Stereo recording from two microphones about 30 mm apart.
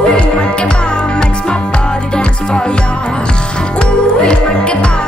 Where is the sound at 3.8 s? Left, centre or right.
Left.